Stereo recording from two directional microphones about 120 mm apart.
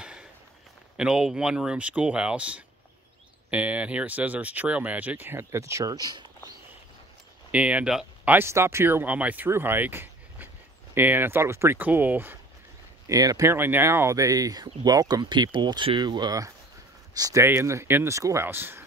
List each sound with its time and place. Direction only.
0.0 s a sound: 5° right (ahead or behind)
0.9 s speech: 5° right (ahead or behind); by 6.2 s 35° right (ahead or behind)
7.5 s speech: 10° right (ahead or behind)
8.4 s speech: 20° right (ahead or behind)
13.0 s speech: 30° right (ahead or behind)